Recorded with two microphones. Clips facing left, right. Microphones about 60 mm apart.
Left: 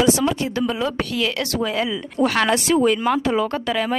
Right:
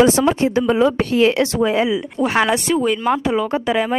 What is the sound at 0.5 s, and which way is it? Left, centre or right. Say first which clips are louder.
Speech: right 7 dB; right.